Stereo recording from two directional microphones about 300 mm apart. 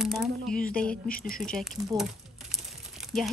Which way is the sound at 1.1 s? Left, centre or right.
Left.